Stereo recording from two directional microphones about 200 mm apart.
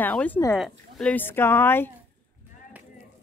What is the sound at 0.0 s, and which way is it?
Speech, 5° left (ahead or behind).